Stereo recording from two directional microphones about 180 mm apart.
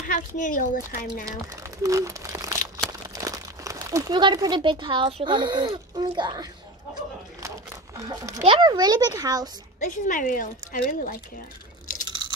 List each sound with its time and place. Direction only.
0.1 s speech: 45° left (ahead or behind)
1.2 s speech: 20° right (ahead or behind)
8.0 s a child's voice: 15° right (ahead or behind)
9.8 s speech: 45° left (ahead or behind)
12.1 s chewing: 25° right (ahead or behind)